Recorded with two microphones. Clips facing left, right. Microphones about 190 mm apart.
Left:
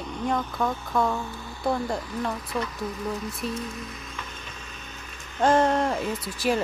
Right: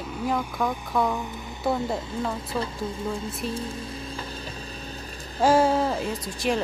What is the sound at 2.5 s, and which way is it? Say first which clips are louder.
Speech: right 1 dB; 30° right (ahead or behind).